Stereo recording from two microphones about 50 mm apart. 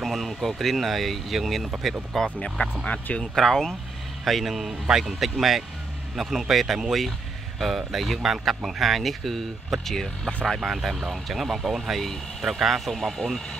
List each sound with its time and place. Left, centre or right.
0.0 s speech: centre
2.8 s speech: left
3.3 s speech: centre